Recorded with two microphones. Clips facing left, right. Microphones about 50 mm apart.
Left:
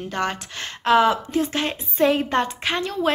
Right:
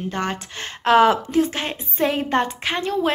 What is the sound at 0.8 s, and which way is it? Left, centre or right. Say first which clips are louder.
Speech: right 2 dB; right.